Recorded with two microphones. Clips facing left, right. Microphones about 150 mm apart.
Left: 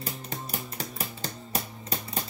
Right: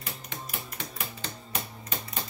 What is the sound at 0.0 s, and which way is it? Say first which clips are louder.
Music: left 4 dB; 35° left (ahead or behind).